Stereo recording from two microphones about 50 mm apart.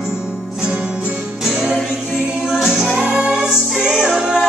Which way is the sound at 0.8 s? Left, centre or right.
Centre.